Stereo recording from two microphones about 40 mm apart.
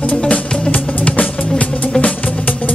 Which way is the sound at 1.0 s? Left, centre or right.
Left.